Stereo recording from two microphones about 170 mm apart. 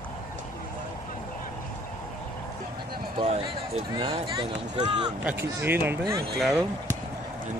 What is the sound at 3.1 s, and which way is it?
Speech, 35° right (ahead or behind).